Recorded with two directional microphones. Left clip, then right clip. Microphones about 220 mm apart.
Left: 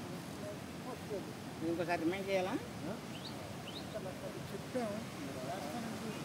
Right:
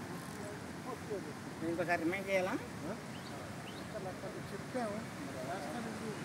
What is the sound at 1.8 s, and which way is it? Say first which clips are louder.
Speech: right 3 dB; 15° right (ahead or behind).